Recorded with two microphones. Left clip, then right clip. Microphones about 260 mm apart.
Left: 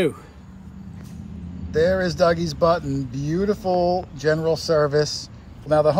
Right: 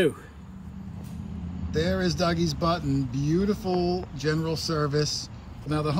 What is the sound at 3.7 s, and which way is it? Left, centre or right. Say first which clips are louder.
Speech: left 10 dB; centre.